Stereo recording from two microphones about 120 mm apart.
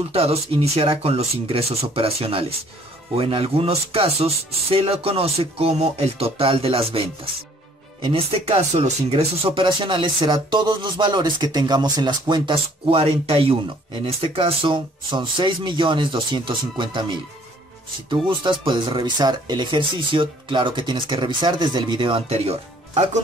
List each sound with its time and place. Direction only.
0.1 s speech: 55° right (ahead or behind)
8.0 s speech: 50° right (ahead or behind)